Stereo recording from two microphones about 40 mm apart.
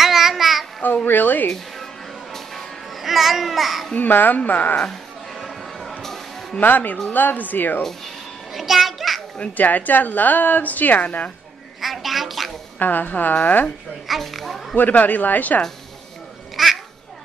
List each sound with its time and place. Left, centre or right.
0.0 s child singing: centre
0.8 s a sound: left
3.0 s a child's voice: centre
4.1 s a woman's voice: left
5.3 s a sound: centre
6.6 s a woman's voice: left
8.5 s music: centre
9.6 s a woman's voice: left
11.1 s a woman's voice: left
11.8 s speech: centre
12.7 s a woman's voice: left
14.0 s a child's voice: centre
14.8 s a woman's voice: left
16.6 s quack: centre